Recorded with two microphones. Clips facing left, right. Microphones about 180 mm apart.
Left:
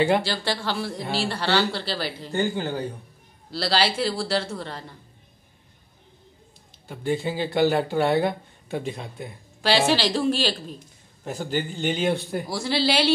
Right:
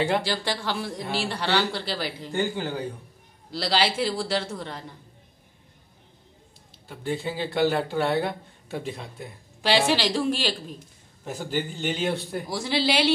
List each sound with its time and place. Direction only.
0.2 s a man's voice: 15° right (ahead or behind)
3.5 s a man's voice: 15° right (ahead or behind)
6.9 s speech: centre (ahead or behind)
9.6 s a man's voice: 15° right (ahead or behind)
11.2 s speech: centre (ahead or behind)
12.4 s a man's voice: 15° right (ahead or behind)